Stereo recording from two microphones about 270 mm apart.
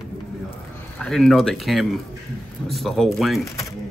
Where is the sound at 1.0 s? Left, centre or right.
Centre.